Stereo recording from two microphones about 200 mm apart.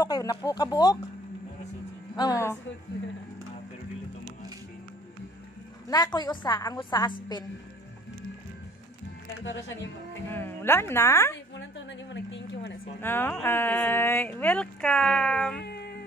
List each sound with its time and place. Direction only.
0.0 s a woman's voice: 20° left (ahead or behind)
2.1 s speech: 20° left (ahead or behind)
5.9 s a woman's voice: 20° left (ahead or behind)
9.4 s speech: 65° left (ahead or behind)
10.3 s speech: 10° left (ahead or behind)
11.5 s a sound: 65° left (ahead or behind)
13.0 s speech: 10° left (ahead or behind)
15.6 s cat: 55° left (ahead or behind)